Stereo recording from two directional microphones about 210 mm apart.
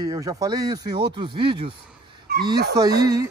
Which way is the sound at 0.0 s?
20° right (ahead or behind).